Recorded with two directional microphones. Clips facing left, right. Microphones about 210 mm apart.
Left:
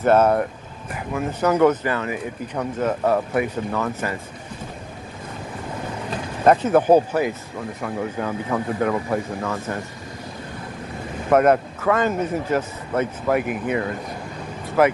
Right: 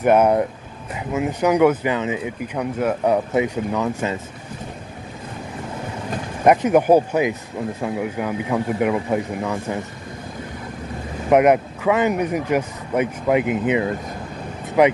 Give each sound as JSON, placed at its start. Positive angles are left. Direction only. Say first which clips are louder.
{"t": 0.0, "sound": "speech", "louder": "right 1 dB", "side_deg": -15}
{"t": 6.4, "sound": "speech", "louder": "right 1 dB", "side_deg": -15}
{"t": 11.2, "sound": "speech", "louder": "right 2 dB", "side_deg": -15}